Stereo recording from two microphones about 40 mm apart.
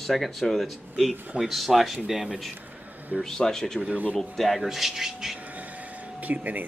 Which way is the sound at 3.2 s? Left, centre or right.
Centre.